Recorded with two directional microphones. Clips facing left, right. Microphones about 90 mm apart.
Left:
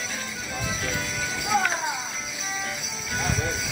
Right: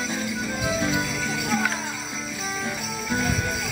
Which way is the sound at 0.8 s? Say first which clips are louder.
Right 6 dB; 10° right (ahead or behind).